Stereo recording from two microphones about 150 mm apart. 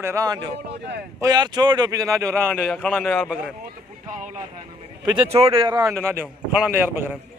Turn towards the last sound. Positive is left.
turn(degrees=-5)  # may be behind; listen again after turning